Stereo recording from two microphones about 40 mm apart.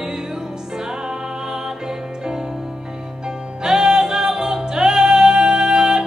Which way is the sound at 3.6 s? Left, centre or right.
Centre.